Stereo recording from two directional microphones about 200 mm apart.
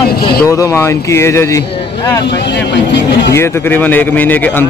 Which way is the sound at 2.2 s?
60° left (ahead or behind).